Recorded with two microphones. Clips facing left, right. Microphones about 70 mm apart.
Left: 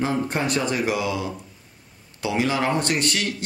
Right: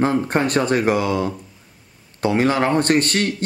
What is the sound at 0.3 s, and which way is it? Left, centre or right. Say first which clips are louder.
Speech: right 6 dB; right.